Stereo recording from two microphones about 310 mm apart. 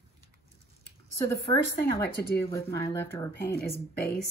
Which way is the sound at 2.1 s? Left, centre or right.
Left.